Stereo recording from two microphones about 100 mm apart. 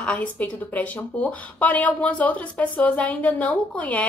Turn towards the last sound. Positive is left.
turn(degrees=15)  # may be behind; listen again after turning